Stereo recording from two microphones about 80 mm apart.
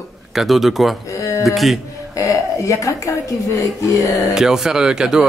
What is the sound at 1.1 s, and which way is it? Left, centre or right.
Speech, left.